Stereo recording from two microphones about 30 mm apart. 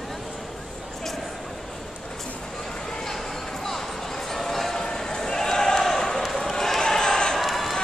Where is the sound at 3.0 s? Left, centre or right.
Centre.